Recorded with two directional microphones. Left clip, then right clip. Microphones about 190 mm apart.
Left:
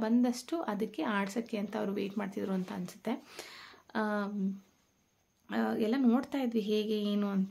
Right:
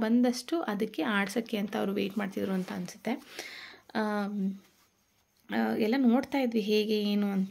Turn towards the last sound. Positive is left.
turn(degrees=-15)  # may be behind; listen again after turning